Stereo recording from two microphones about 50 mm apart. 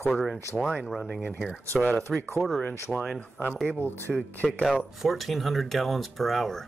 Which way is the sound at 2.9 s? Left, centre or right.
Centre.